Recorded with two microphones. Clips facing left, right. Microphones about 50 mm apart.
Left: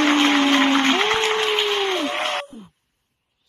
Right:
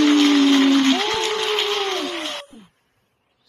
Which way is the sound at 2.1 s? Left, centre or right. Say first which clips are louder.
Left 5 dB; left.